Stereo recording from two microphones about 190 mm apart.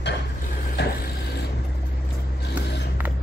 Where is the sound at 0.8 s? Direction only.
65° left (ahead or behind).